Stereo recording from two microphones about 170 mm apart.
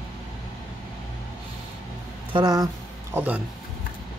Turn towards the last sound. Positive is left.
turn(degrees=-10)  # may be behind; listen again after turning